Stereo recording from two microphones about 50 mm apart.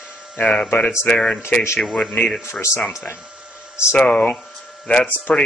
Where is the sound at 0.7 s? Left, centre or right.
Left.